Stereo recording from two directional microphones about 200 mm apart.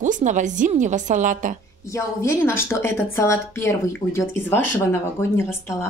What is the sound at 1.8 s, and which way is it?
Speech, 15° left (ahead or behind).